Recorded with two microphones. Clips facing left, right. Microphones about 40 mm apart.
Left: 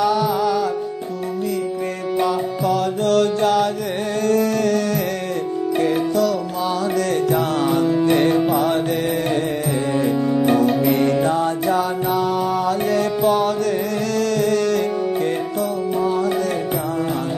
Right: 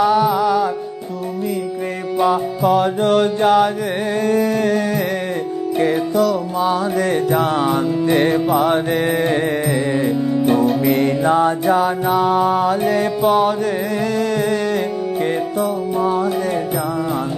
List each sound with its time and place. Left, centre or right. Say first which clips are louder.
0.0 s music: right 3 dB; centre
2.1 s music: right 4 dB; right
6.6 s music: right 3 dB; right
8.0 s music: right 2 dB; centre
8.5 s music: right 3 dB; right
10.6 s music: right 1 dB; centre
11.2 s music: right 4 dB; right
16.0 s music: right 2 dB; centre